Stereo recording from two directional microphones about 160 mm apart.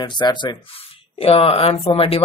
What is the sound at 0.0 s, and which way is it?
Speech, 30° left (ahead or behind).